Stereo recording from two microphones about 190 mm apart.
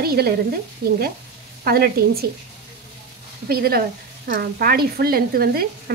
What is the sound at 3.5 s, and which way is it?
A woman's voice, 55° right (ahead or behind).